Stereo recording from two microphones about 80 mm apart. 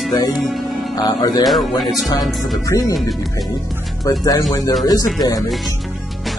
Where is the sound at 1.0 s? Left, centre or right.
Left.